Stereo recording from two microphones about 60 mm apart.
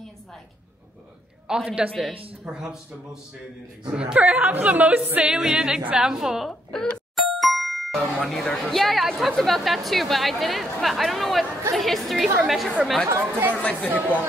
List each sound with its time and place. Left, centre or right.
1.5 s a woman's voice: centre
4.2 s speech: right
5.2 s a woman's voice: centre
6.7 s ding: centre
8.2 s a woman's voice: centre
13.2 s speech: right
13.6 s speech: centre
13.8 s speech: right